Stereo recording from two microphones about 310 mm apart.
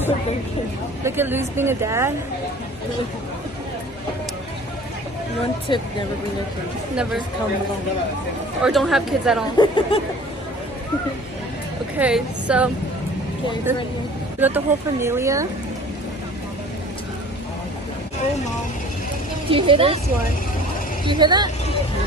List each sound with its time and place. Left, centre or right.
1.0 s speech: centre
5.7 s speech: centre
8.6 s speech: centre
9.6 s speech: centre
12.0 s speech: centre
14.4 s speech: centre
19.5 s speech: centre
21.0 s speech: centre